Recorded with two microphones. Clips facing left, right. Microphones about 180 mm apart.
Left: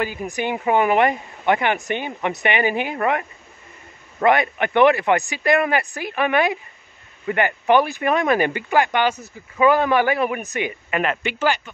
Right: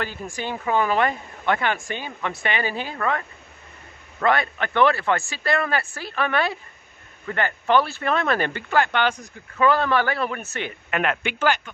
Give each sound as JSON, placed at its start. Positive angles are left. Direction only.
{"t": 0.0, "sound": "speech", "side_deg": 10}